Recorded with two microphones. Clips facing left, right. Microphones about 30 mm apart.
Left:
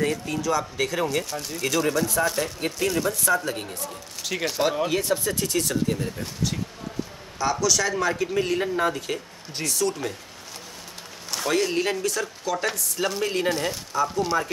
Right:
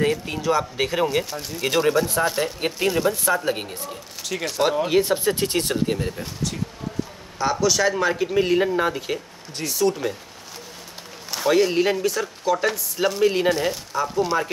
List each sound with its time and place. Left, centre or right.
0.0 s speech: right
4.2 s speech: centre
4.8 s speech: right
5.3 s speech: right
7.6 s speech: centre
11.2 s speech: centre